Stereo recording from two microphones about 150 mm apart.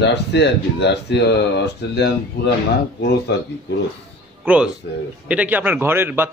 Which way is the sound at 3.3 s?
90° left.